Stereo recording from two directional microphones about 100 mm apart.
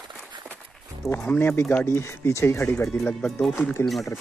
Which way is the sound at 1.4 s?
20° left (ahead or behind).